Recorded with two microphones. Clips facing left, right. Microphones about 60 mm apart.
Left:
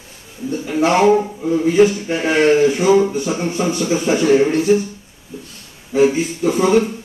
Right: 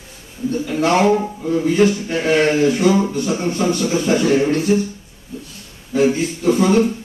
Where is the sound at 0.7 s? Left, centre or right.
Centre.